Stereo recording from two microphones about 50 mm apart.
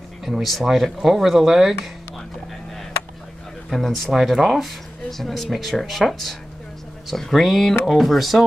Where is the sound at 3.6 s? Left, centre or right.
Centre.